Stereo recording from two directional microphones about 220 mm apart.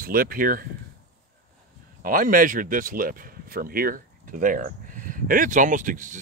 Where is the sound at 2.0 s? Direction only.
40° right (ahead or behind).